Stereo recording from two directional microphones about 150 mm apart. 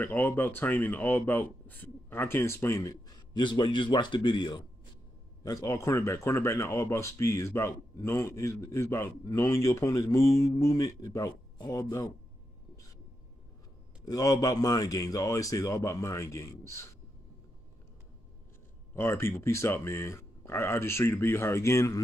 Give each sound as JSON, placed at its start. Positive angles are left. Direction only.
{"t": 0.0, "sound": "speech", "side_deg": 15}
{"t": 14.0, "sound": "speech", "side_deg": 25}
{"t": 18.9, "sound": "speech", "side_deg": 15}